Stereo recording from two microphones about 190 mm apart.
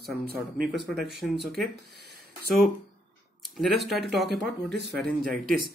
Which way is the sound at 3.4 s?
Centre (ahead or behind).